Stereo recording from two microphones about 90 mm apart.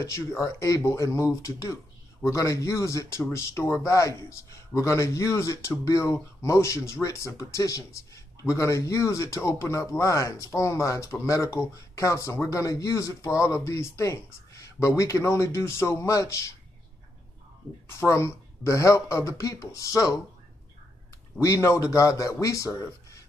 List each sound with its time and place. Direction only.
0.0 s speech: 35° left (ahead or behind)
17.8 s speech: 30° left (ahead or behind)
21.4 s speech: 30° left (ahead or behind)